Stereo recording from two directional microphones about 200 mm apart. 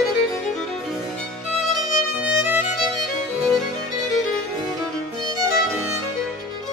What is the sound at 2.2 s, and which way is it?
Music, 10° right (ahead or behind).